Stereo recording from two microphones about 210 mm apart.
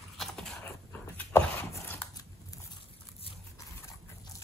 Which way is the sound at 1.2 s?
10° left (ahead or behind).